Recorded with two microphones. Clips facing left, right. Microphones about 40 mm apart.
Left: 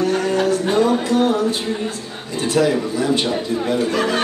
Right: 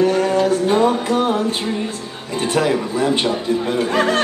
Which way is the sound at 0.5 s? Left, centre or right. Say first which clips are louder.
Right 1 dB; right.